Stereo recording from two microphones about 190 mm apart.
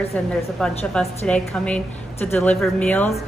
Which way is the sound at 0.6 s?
5° left (ahead or behind).